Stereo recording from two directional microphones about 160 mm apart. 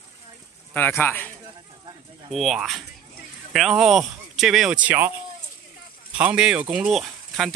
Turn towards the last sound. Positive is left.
turn(degrees=0)  # may be behind; listen again after turning